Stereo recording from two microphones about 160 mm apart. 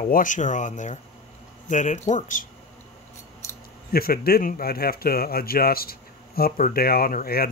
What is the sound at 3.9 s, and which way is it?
Speech, 70° left (ahead or behind).